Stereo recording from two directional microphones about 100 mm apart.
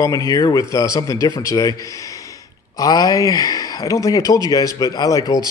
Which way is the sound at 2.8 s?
35° left (ahead or behind).